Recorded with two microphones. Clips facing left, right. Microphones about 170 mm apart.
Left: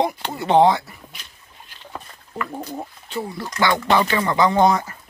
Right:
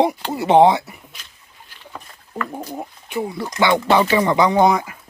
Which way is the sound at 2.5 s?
10° right (ahead or behind).